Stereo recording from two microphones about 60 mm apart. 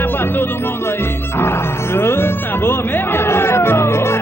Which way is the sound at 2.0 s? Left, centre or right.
Left.